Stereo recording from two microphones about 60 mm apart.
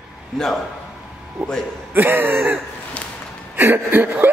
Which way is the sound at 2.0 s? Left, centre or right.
Right.